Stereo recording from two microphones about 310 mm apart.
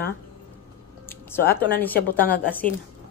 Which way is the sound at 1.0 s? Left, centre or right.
Centre.